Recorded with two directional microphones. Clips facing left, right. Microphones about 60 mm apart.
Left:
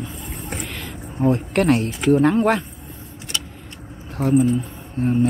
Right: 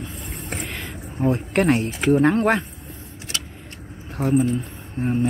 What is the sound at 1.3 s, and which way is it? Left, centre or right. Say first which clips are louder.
Speech: left 1 dB; right.